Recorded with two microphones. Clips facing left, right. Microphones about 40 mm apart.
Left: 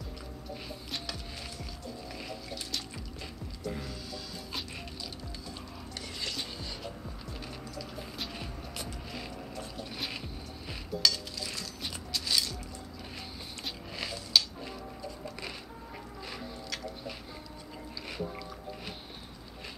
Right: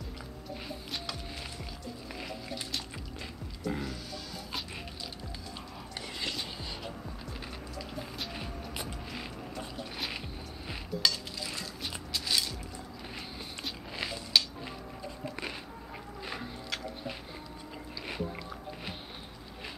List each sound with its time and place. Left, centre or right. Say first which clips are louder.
0.8 s music: left 1 dB; centre
3.6 s music: right 3 dB; right
5.9 s whispering: right 2 dB; centre
8.3 s music: right 2 dB; centre
9.9 s music: right 1 dB; centre
10.2 s dishes: right 1 dB; centre
12.1 s music: even; centre
13.9 s a sound: even; centre